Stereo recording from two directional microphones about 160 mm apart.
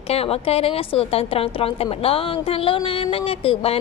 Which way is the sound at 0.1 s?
40° left (ahead or behind).